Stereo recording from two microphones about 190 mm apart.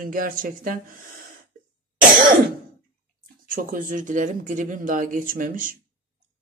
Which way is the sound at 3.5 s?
45° right (ahead or behind).